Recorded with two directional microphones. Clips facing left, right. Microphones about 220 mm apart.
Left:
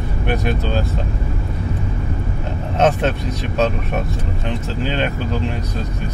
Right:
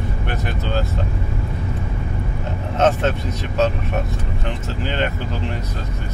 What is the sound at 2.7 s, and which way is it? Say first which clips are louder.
Speech: left 1 dB; 15° left (ahead or behind).